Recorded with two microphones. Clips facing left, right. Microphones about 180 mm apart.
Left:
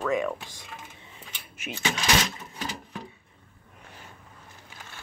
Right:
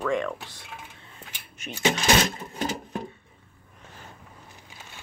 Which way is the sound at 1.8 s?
45° right (ahead or behind).